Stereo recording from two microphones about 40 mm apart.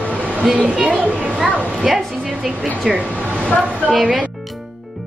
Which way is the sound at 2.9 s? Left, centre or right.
Right.